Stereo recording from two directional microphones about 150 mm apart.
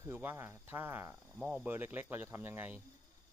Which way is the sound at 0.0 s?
15° right (ahead or behind).